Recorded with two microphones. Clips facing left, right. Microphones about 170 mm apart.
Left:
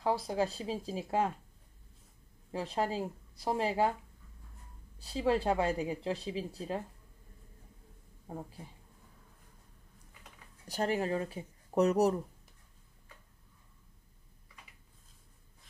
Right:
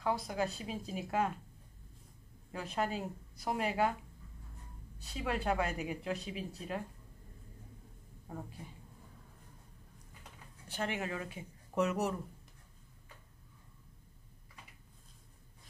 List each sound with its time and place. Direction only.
0.0 s speech: 30° left (ahead or behind)
2.5 s speech: 30° left (ahead or behind)
4.9 s speech: 30° left (ahead or behind)
8.3 s speech: 30° left (ahead or behind)
10.7 s speech: 40° left (ahead or behind)